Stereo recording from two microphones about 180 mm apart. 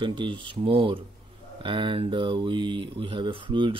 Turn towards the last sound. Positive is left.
turn(degrees=-25)  # may be behind; listen again after turning